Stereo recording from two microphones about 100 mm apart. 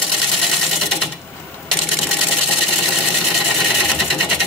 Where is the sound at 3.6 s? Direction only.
Centre (ahead or behind).